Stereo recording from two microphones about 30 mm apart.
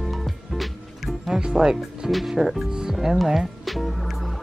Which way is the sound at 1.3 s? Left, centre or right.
Right.